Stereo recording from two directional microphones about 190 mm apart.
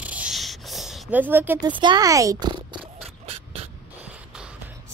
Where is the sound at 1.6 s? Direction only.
20° right (ahead or behind).